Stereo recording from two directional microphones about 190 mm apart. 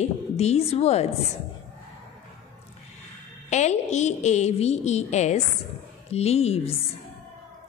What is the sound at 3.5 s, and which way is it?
A woman's voice, 35° left (ahead or behind).